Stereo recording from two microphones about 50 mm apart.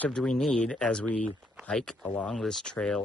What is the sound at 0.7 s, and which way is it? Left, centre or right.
Speech, centre.